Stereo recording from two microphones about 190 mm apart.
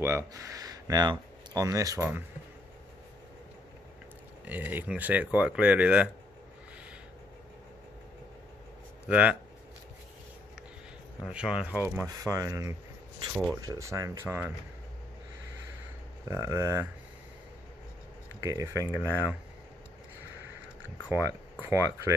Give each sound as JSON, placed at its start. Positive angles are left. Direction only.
{"t": 0.0, "sound": "speech", "side_deg": -15}
{"t": 4.5, "sound": "speech", "side_deg": -10}
{"t": 9.0, "sound": "speech", "side_deg": -5}
{"t": 11.2, "sound": "speech", "side_deg": -5}
{"t": 13.3, "sound": "speech", "side_deg": 0}
{"t": 13.6, "sound": "speech", "side_deg": -20}
{"t": 16.3, "sound": "speech", "side_deg": -15}
{"t": 18.4, "sound": "speech", "side_deg": -15}
{"t": 21.1, "sound": "speech", "side_deg": -10}